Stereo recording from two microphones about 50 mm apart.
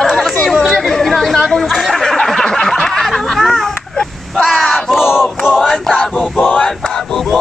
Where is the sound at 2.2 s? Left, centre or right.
Centre.